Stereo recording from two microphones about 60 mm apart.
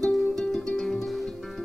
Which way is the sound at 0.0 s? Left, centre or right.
Centre.